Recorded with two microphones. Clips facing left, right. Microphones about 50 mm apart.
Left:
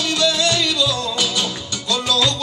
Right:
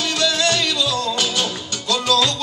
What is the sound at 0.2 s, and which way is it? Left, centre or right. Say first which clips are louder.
Music: even; right.